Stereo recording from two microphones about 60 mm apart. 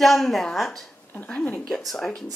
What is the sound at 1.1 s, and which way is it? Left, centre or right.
Speech, left.